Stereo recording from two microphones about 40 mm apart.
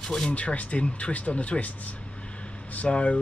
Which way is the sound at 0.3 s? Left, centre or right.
Left.